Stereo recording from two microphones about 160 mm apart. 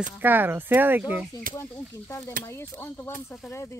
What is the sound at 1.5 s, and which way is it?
Speech, 15° left (ahead or behind).